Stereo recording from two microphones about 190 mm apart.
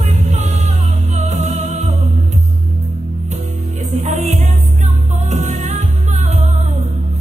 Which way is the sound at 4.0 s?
35° right (ahead or behind).